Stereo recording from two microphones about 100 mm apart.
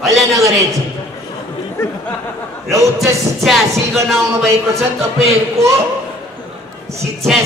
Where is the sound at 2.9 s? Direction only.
Centre (ahead or behind).